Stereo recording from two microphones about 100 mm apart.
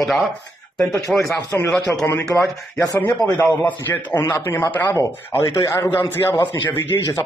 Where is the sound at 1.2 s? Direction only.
30° left (ahead or behind).